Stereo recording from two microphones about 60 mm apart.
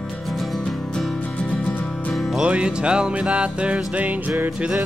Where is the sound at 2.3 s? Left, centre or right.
Centre.